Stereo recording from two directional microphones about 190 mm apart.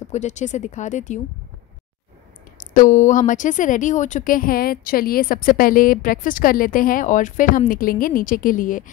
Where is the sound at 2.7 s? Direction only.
40° left (ahead or behind).